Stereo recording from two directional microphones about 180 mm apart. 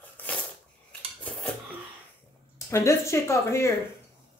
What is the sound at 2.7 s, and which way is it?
Speech, 15° left (ahead or behind).